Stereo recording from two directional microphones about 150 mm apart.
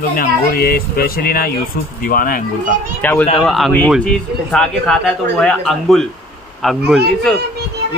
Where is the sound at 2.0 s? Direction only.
70° left (ahead or behind).